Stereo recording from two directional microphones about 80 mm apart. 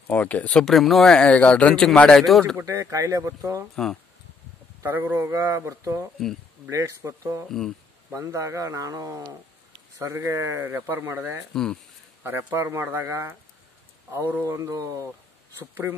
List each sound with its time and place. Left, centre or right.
0.1 s speech: centre
2.6 s speech: right
3.7 s speech: centre
4.8 s speech: right
7.4 s speech: centre
8.1 s a man's voice: right
11.5 s speech: centre
12.2 s speech: right
14.4 s a man's voice: right